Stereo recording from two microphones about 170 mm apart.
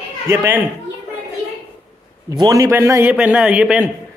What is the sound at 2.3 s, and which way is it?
A man's voice, 20° right (ahead or behind).